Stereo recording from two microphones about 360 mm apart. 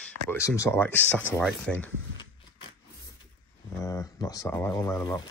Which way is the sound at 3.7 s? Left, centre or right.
Centre.